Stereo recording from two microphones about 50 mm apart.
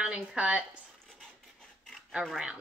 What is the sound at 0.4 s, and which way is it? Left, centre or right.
Speech, right.